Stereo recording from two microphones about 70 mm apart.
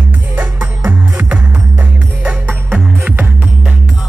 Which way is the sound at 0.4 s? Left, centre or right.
Right.